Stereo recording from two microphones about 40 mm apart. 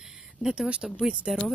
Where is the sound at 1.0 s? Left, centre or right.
Right.